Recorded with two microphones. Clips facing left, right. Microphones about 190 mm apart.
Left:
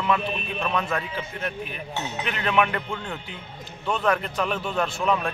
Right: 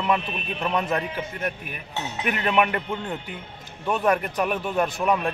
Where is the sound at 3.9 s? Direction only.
15° right (ahead or behind).